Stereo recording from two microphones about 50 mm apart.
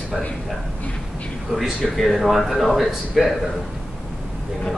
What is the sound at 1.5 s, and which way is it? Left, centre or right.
Speech, centre.